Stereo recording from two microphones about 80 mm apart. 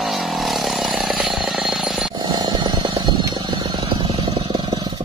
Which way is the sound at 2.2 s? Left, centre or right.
Right.